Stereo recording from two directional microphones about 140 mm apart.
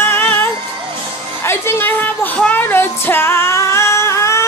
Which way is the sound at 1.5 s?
15° left (ahead or behind).